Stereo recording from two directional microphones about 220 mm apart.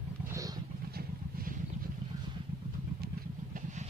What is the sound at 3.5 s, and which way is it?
Vehicle, 35° right (ahead or behind).